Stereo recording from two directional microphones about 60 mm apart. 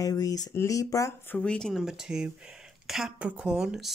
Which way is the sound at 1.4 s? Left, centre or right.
Centre.